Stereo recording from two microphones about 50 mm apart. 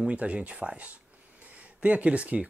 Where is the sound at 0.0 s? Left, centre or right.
Right.